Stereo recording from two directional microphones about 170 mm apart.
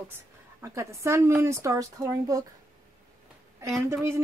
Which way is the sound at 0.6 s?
15° right (ahead or behind).